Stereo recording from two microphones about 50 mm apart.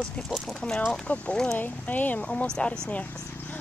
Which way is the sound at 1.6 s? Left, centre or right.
Left.